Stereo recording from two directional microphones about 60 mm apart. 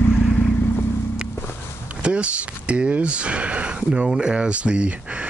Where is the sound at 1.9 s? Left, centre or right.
Centre.